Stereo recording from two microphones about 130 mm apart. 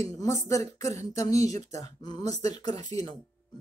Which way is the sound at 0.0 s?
25° left (ahead or behind).